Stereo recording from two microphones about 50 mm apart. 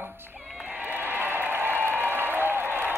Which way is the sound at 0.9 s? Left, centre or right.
Right.